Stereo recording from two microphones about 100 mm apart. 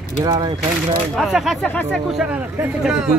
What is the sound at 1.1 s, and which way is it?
Speech, centre (ahead or behind).